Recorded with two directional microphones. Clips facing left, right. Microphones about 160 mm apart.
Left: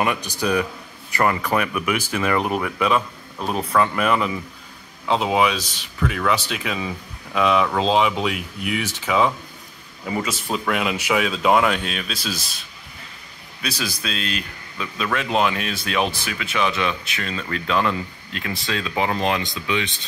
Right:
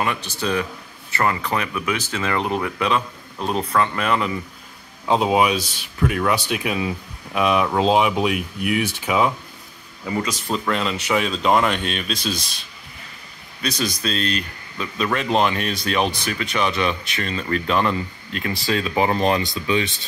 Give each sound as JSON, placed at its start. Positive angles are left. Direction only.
{"t": 0.0, "sound": "speech", "side_deg": 15}
{"t": 5.0, "sound": "speech", "side_deg": -15}
{"t": 10.0, "sound": "speech", "side_deg": 5}
{"t": 13.6, "sound": "speech", "side_deg": 5}